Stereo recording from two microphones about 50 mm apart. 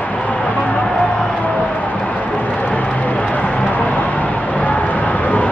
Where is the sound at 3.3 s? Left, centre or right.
Left.